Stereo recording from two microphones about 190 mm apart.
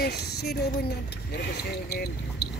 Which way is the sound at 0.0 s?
60° left (ahead or behind).